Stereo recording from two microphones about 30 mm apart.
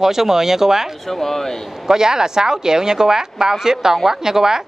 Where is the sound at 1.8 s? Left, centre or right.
Right.